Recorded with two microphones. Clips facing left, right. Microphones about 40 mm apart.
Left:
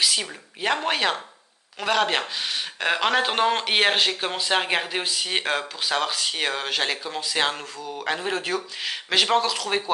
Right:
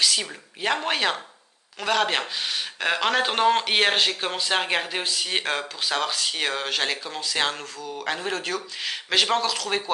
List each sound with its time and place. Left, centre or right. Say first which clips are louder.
0.0 s speech: even; centre